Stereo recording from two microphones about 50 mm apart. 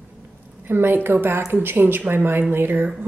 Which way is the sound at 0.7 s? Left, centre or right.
Right.